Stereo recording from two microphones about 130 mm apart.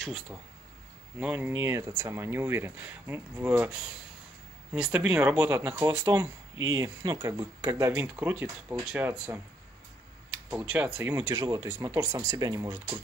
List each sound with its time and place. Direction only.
1.2 s speech: 10° right (ahead or behind)
1.5 s speech: 20° right (ahead or behind)
4.7 s speech: 10° right (ahead or behind)
10.5 s speech: 10° right (ahead or behind)